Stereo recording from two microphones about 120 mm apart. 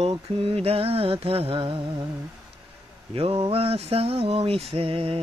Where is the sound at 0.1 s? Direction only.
50° right (ahead or behind).